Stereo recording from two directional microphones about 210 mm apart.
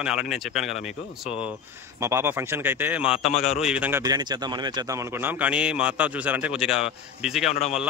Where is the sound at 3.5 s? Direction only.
5° right (ahead or behind).